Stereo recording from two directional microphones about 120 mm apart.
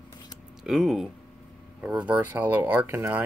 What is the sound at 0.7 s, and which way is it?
Speech, centre (ahead or behind).